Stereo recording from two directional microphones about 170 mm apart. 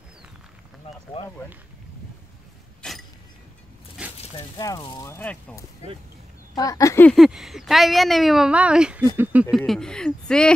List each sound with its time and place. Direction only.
1.2 s speech: 35° left (ahead or behind)
2.8 s a sound: centre (ahead or behind)
4.4 s speech: 20° left (ahead or behind)
6.5 s speech: 20° left (ahead or behind)
7.1 s speech: centre (ahead or behind)
9.6 s speech: 5° left (ahead or behind)